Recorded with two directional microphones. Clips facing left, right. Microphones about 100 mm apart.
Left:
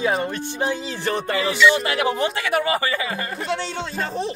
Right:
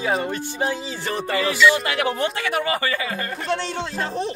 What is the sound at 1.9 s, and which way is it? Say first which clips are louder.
Speech: left 1 dB; 15° left (ahead or behind).